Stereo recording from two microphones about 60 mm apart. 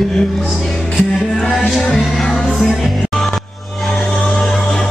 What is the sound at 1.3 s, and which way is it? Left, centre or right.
Music, centre.